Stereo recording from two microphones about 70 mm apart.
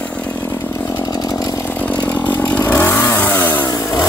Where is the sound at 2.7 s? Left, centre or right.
Left.